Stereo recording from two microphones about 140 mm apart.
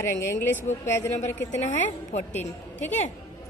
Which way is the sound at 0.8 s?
20° left (ahead or behind).